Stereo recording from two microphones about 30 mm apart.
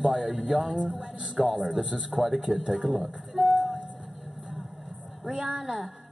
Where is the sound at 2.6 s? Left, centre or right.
Right.